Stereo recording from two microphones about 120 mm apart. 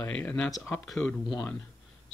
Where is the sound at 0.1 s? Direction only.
10° left (ahead or behind).